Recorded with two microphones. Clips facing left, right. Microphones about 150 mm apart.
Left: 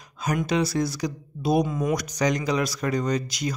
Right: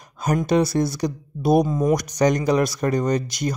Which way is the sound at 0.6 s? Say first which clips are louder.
Right 4 dB; 55° right (ahead or behind).